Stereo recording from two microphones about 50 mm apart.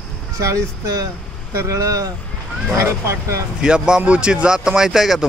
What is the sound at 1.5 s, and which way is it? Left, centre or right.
Speech, right.